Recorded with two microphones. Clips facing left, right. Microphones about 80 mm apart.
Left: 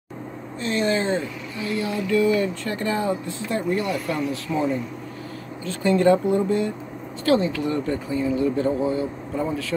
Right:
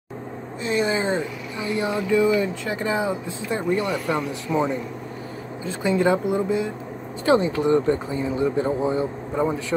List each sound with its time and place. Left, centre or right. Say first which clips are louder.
0.6 s speech: even; centre
3.7 s speech: right 1 dB; right
5.7 s speech: left 2 dB; centre
7.2 s speech: right 2 dB; right